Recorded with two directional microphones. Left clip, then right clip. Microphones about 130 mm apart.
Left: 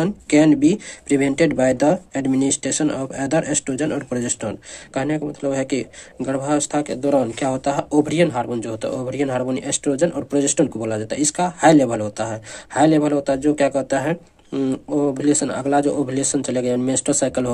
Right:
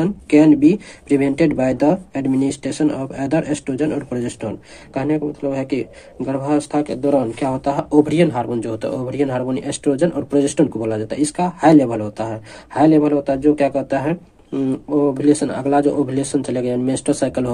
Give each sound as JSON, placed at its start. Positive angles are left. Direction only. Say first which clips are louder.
{"t": 0.0, "sound": "speech", "louder": "right 2 dB", "side_deg": 30}